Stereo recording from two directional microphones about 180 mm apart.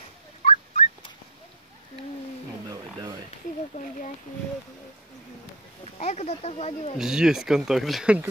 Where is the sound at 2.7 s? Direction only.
25° right (ahead or behind).